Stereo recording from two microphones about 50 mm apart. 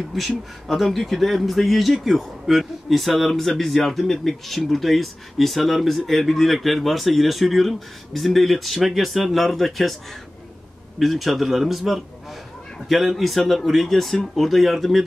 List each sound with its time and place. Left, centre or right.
0.7 s a man's voice: centre
11.0 s a man's voice: centre